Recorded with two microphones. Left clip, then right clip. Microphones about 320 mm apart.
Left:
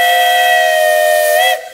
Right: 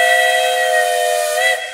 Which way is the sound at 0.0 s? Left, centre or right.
Centre.